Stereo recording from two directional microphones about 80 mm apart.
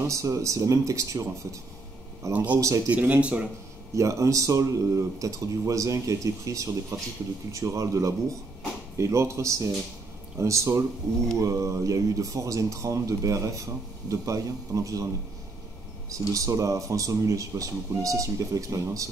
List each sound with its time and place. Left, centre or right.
0.0 s speech: right
2.3 s speech: centre
3.9 s speech: right
16.1 s speech: right